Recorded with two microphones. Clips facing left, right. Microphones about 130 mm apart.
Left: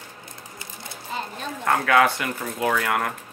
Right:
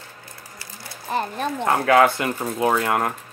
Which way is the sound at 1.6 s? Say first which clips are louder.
Right 3 dB; 30° right (ahead or behind).